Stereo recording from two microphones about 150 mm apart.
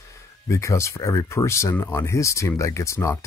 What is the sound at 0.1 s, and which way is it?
Speech, 20° left (ahead or behind).